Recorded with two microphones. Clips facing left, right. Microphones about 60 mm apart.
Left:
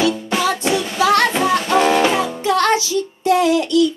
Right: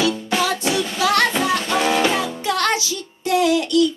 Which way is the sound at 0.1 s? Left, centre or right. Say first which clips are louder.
Left 2 dB; centre.